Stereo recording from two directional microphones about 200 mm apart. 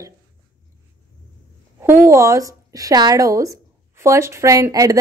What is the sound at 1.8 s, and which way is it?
A woman's voice, 10° right (ahead or behind).